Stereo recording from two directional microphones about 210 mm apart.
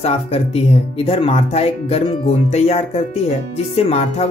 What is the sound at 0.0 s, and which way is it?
Speech, 30° left (ahead or behind).